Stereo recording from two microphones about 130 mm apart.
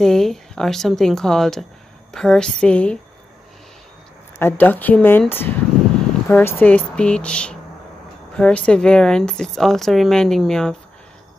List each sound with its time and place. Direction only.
0.0 s speech: 5° left (ahead or behind)
4.4 s speech: 15° left (ahead or behind)